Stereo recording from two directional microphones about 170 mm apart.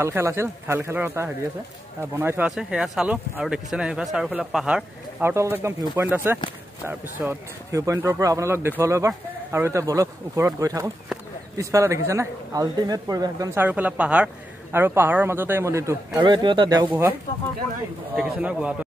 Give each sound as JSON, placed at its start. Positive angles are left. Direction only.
{"t": 0.0, "sound": "a man's voice", "side_deg": -15}
{"t": 5.3, "sound": "a man's voice", "side_deg": -15}
{"t": 13.7, "sound": "a man's voice", "side_deg": -10}
{"t": 18.1, "sound": "speech", "side_deg": -5}